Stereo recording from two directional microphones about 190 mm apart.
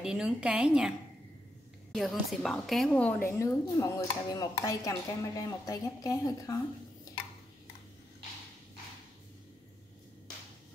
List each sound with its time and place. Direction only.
0.0 s a woman's voice: 5° right (ahead or behind)
2.0 s a woman's voice: centre (ahead or behind); by 6.6 s 15° left (ahead or behind)